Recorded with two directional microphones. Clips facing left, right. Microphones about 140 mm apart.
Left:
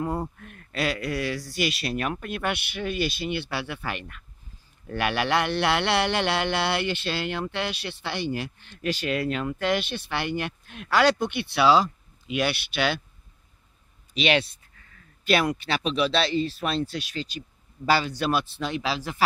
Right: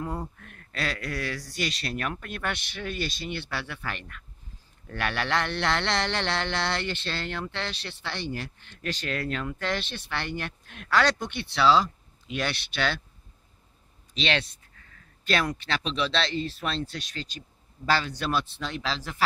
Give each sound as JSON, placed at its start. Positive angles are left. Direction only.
{"t": 0.0, "sound": "speech", "side_deg": 25}
{"t": 14.1, "sound": "speech", "side_deg": 10}